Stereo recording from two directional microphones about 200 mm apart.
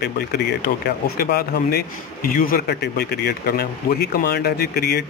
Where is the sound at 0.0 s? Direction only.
55° left (ahead or behind).